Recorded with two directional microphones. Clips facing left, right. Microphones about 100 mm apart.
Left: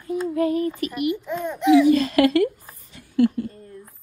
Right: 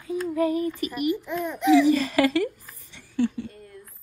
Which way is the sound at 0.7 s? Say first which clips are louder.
Left 1 dB; 20° left (ahead or behind).